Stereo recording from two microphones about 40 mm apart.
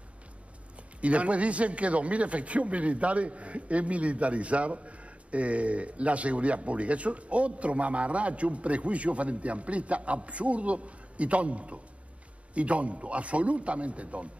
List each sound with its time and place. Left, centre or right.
1.0 s a man's voice: right